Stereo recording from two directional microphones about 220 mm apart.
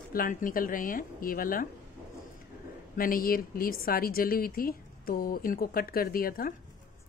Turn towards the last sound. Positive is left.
turn(degrees=40)  # may be behind; listen again after turning